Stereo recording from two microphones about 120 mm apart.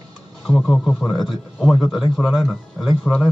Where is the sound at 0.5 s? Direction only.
5° left (ahead or behind).